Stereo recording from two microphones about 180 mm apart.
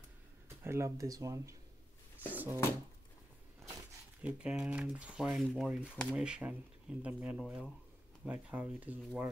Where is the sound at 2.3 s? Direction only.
10° right (ahead or behind).